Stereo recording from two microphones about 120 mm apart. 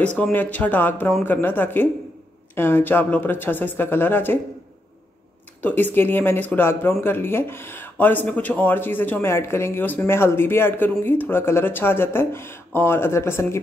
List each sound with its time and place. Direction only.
0.0 s speech: 10° left (ahead or behind)
5.6 s speech: 15° left (ahead or behind)